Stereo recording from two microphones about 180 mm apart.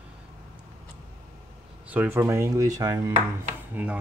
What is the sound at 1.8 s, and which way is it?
Speech, 10° right (ahead or behind).